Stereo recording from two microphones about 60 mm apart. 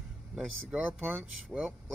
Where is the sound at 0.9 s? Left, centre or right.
Right.